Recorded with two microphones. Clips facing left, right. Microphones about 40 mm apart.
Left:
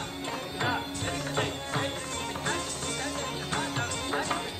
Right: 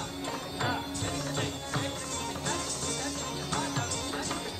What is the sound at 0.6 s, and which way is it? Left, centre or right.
Music, left.